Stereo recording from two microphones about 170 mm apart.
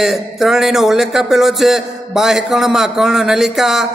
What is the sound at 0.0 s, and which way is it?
A man's voice, centre (ahead or behind).